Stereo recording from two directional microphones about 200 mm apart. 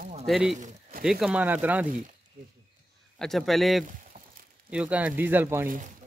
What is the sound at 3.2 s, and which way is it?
Speech, centre (ahead or behind).